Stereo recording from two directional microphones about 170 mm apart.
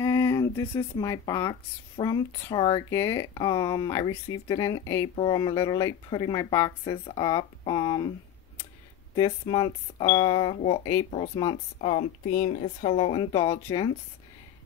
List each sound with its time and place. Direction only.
0.0 s speech: 20° left (ahead or behind)
9.1 s speech: 25° left (ahead or behind)
11.1 s speech: 40° left (ahead or behind)